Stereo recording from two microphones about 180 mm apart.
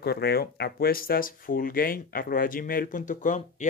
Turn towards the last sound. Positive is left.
turn(degrees=45)  # may be behind; listen again after turning